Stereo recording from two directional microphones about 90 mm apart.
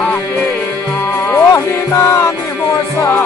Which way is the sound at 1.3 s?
30° left (ahead or behind).